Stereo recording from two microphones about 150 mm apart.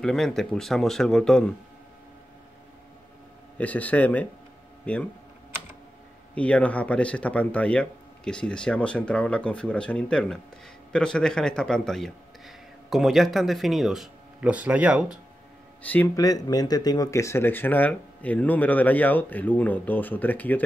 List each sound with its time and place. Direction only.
0.0 s speech: 5° left (ahead or behind)
3.5 s speech: 10° left (ahead or behind)
6.3 s a man's voice: 10° left (ahead or behind); by 15.1 s 5° right (ahead or behind)
15.8 s speech: 10° left (ahead or behind)
16.2 s speech: 25° left (ahead or behind)